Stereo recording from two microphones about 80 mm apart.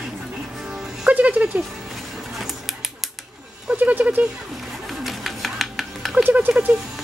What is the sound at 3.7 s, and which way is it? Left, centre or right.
Speech, centre.